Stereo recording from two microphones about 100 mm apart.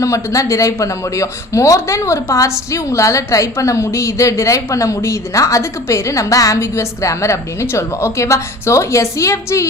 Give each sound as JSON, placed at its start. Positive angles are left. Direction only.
{"t": 0.0, "sound": "a man's voice", "side_deg": 30}